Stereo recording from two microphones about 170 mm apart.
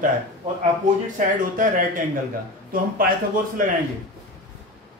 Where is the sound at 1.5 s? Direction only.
50° right (ahead or behind).